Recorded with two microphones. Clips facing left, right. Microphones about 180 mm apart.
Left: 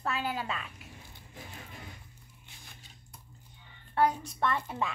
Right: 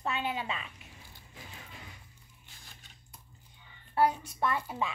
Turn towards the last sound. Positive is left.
turn(degrees=-5)  # may be behind; listen again after turning